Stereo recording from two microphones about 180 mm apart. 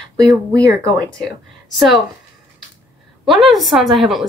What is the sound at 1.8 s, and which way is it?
Speech, centre (ahead or behind).